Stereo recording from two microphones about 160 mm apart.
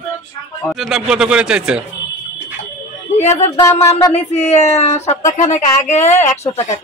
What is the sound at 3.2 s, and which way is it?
A woman's voice, 45° left (ahead or behind).